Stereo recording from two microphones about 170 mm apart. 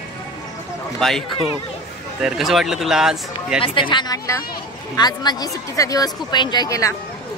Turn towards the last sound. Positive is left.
turn(degrees=20)  # may be behind; listen again after turning